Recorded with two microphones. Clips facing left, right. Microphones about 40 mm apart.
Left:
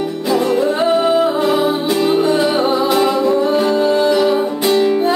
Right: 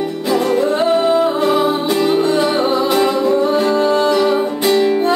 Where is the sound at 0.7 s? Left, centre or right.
Centre.